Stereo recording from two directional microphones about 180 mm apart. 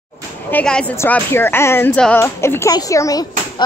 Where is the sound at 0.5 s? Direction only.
5° left (ahead or behind).